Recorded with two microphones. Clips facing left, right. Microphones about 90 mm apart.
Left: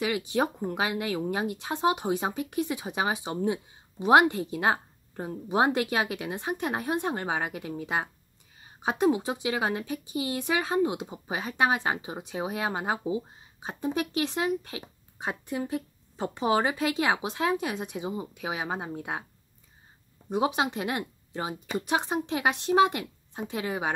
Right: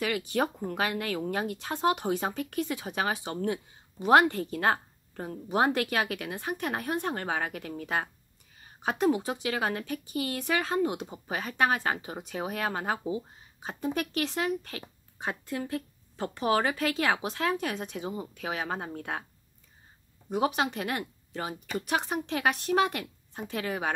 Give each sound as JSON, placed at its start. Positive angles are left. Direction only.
{"t": 0.0, "sound": "a woman's voice", "side_deg": 20}
{"t": 20.2, "sound": "speech", "side_deg": 20}